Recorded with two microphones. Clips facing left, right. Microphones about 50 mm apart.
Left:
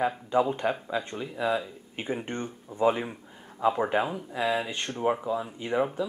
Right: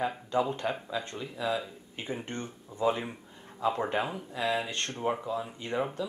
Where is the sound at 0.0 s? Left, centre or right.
Centre.